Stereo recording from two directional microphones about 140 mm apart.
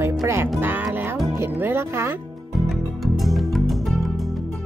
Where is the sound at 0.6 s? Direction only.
15° right (ahead or behind).